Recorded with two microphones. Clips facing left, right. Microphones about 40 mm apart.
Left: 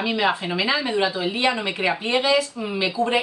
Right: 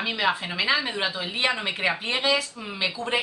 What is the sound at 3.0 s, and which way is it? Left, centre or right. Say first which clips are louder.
Speech: left 9 dB; left.